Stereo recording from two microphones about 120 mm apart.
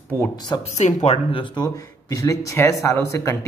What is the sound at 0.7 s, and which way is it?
Speech, 65° left (ahead or behind).